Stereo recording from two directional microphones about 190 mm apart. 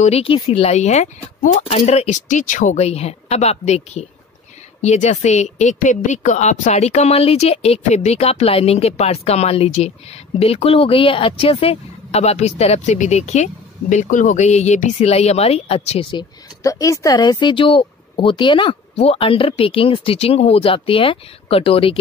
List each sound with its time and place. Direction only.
0.0 s a woman's voice: 30° left (ahead or behind)